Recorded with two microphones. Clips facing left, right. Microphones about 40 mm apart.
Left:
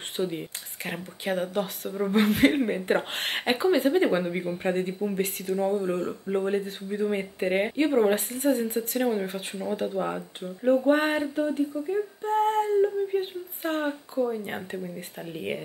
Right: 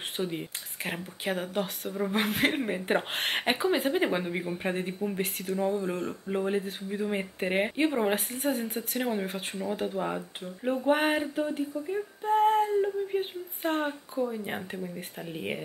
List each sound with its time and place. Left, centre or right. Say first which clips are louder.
0.2 s speech: left 5 dB; centre